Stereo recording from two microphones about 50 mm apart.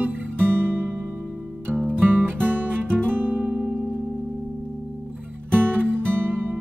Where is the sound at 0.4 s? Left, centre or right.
Right.